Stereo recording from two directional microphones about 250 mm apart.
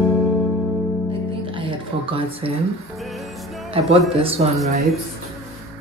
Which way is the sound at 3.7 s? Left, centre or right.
Right.